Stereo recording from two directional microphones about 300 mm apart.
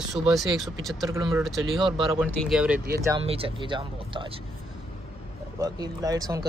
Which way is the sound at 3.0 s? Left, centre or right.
Centre.